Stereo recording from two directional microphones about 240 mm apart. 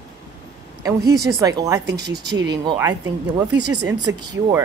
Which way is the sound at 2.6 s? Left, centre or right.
Centre.